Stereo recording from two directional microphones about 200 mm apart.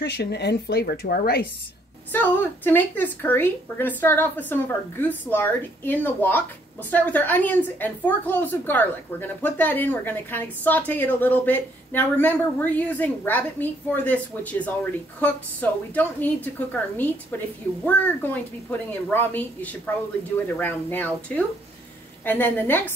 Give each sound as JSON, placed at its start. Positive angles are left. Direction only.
{"t": 0.0, "sound": "speech", "side_deg": 55}
{"t": 2.1, "sound": "a woman's voice", "side_deg": 10}
{"t": 22.2, "sound": "a woman's voice", "side_deg": 10}